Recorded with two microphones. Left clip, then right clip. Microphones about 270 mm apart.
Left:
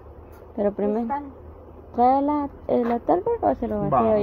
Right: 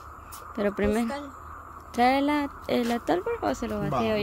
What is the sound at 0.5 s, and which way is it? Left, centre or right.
A woman's voice, right.